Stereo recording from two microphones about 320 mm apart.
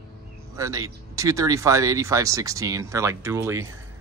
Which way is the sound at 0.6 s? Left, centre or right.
Centre.